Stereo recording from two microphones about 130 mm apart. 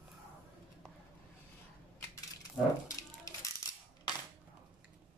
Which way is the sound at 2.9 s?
25° left (ahead or behind).